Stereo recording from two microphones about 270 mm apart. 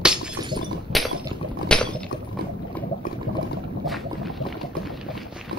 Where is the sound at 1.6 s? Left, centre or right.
Centre.